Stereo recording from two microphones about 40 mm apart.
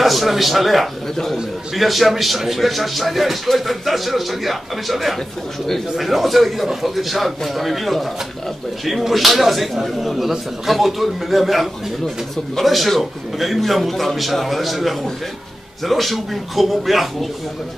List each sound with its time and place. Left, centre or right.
0.0 s a man's voice: centre